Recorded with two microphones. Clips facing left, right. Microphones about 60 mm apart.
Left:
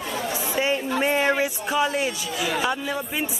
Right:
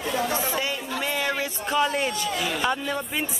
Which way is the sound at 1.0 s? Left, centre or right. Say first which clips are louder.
Left 5 dB; left.